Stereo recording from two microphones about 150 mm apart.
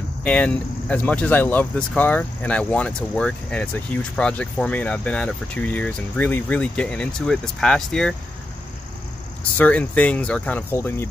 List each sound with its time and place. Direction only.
0.2 s speech: 10° left (ahead or behind)
9.6 s speech: 10° left (ahead or behind)